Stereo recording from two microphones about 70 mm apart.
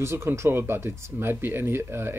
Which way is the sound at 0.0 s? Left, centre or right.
Right.